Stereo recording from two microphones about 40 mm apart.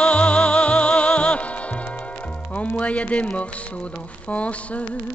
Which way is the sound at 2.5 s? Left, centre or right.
Left.